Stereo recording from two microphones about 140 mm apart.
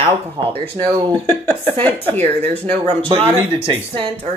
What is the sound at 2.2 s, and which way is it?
Speech, 45° right (ahead or behind).